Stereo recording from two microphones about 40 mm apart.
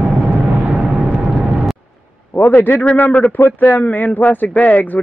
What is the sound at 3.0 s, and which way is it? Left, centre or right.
Speech, left.